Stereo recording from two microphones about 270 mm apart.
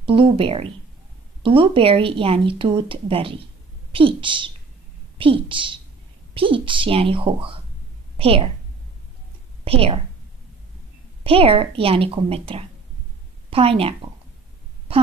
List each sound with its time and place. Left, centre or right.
0.0 s a woman's voice: centre
9.7 s a woman's voice: right
11.2 s speech: right